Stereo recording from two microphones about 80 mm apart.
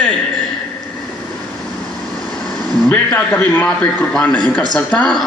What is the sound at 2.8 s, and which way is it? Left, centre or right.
A man's voice, left.